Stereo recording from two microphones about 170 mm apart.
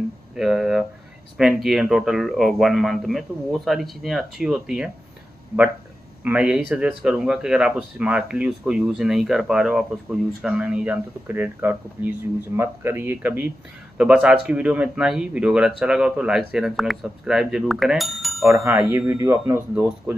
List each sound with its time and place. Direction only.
0.4 s speech: 5° right (ahead or behind)
6.2 s speech: 5° right (ahead or behind)
18.5 s speech: 15° right (ahead or behind)